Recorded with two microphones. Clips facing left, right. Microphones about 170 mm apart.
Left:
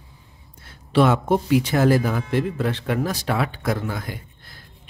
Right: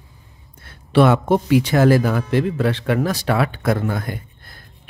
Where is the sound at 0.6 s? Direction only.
60° right (ahead or behind).